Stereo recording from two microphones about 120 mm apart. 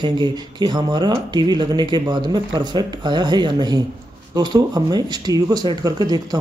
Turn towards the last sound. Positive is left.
turn(degrees=-35)  # may be behind; listen again after turning